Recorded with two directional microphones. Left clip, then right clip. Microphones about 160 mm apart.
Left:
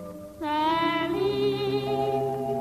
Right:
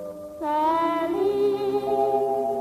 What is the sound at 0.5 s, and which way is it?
Music, 20° left (ahead or behind).